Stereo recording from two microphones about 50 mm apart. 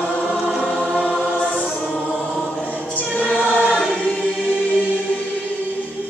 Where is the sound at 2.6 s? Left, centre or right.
Left.